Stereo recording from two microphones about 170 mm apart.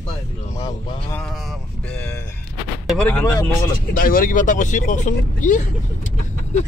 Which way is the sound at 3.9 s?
55° left (ahead or behind).